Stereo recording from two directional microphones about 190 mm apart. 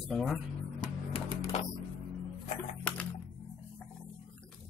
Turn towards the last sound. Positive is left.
turn(degrees=5)  # may be behind; listen again after turning